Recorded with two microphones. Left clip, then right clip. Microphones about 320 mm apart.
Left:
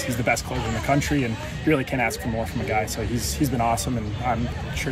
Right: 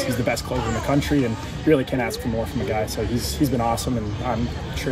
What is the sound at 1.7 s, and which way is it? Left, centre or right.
Speech, centre.